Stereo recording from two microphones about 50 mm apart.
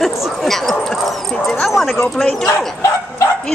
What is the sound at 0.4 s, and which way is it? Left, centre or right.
Speech, centre.